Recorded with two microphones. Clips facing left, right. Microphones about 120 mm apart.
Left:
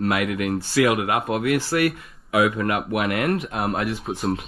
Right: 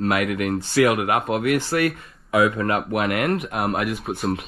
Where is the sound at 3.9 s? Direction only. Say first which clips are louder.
Even; centre (ahead or behind).